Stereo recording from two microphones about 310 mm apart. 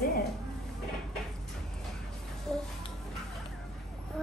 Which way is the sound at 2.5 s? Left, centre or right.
Centre.